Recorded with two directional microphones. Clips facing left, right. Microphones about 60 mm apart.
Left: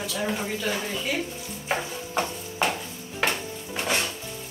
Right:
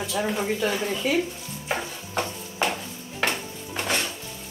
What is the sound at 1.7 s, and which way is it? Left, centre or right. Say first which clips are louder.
Stir: left 1 dB; centre.